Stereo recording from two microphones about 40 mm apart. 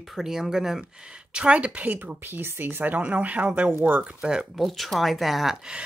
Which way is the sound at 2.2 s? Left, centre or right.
Right.